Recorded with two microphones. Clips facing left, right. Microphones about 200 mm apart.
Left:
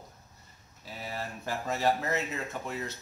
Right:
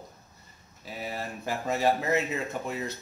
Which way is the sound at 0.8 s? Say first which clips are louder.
Right 3 dB; 15° right (ahead or behind).